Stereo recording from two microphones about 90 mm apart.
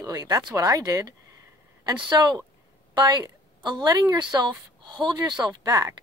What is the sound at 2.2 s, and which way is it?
Speech, 40° right (ahead or behind).